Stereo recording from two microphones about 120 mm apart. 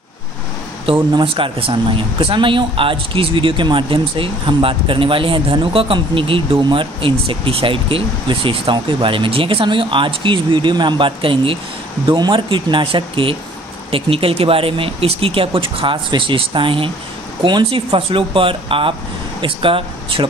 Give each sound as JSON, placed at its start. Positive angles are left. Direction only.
{"t": 1.1, "sound": "speech", "side_deg": -45}